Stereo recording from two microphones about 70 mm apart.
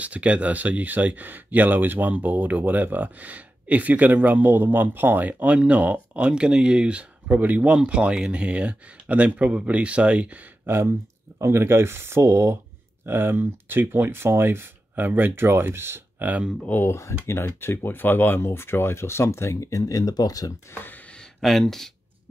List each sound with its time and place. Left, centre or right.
0.0 s speech: centre
7.8 s speech: centre; by 12.5 s right
13.0 s speech: right
16.2 s speech: right
16.6 s speech: left
16.9 s speech: left
20.7 s speech: left
21.1 s a sound: centre